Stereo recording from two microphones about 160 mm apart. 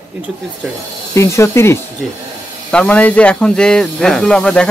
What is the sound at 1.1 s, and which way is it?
Speech, 20° left (ahead or behind).